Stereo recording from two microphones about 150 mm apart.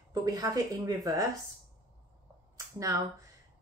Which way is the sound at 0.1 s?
25° right (ahead or behind).